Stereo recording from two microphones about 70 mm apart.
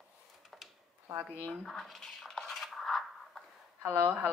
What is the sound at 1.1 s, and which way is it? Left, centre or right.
Speech, right.